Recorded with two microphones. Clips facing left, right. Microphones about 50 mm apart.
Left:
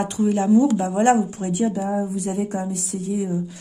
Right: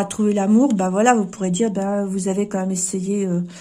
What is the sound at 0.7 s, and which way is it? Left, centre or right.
Speech, right.